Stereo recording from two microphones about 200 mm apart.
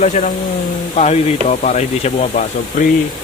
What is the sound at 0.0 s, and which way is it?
Speech, 35° left (ahead or behind).